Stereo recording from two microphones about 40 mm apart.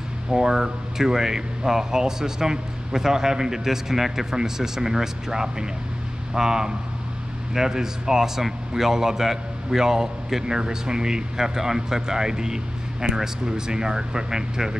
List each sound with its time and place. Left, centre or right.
0.3 s a man's voice: centre